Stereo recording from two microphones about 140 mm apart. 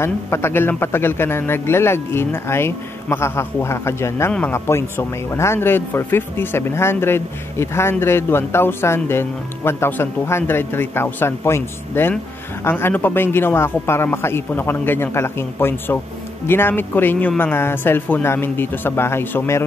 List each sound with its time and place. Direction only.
0.0 s speech: 20° left (ahead or behind)